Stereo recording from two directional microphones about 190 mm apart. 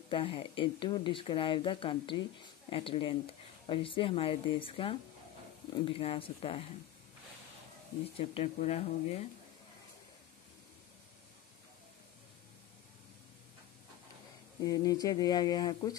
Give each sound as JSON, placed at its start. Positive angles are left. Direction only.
{"t": 0.1, "sound": "speech", "side_deg": 25}
{"t": 8.2, "sound": "speech", "side_deg": 30}
{"t": 14.6, "sound": "speech", "side_deg": 20}